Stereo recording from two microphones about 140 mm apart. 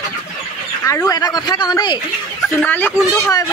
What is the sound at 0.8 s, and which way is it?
Speech, 20° left (ahead or behind).